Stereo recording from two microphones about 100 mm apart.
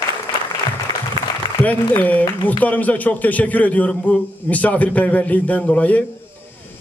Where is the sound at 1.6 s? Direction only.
15° left (ahead or behind).